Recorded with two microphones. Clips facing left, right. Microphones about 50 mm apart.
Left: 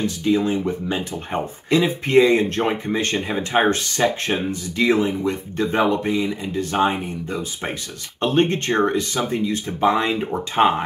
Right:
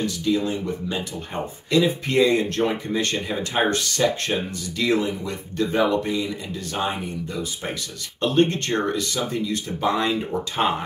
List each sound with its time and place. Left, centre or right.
0.0 s speech: left